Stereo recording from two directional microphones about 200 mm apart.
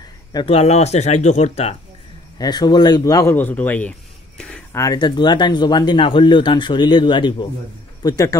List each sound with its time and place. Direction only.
0.0 s speech: 20° left (ahead or behind)
2.3 s a man's voice: 20° left (ahead or behind)
4.7 s a man's voice: 20° left (ahead or behind)